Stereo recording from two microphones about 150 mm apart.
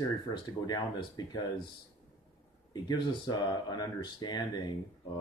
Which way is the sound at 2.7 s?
30° left (ahead or behind).